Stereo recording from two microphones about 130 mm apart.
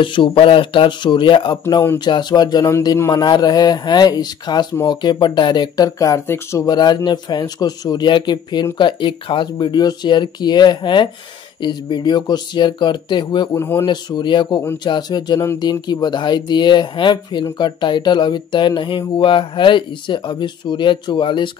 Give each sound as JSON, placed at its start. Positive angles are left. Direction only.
{"t": 0.0, "sound": "speech", "side_deg": 40}
{"t": 13.6, "sound": "speech", "side_deg": 20}
{"t": 13.8, "sound": "speech", "side_deg": 35}